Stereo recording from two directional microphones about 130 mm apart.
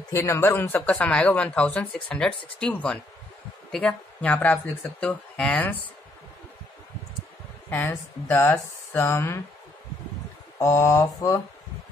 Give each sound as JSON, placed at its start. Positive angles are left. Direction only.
{"t": 0.1, "sound": "speech", "side_deg": 20}
{"t": 7.7, "sound": "speech", "side_deg": 15}
{"t": 10.6, "sound": "speech", "side_deg": 20}